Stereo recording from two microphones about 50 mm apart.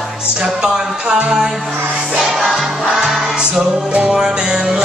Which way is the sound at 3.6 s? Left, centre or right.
Right.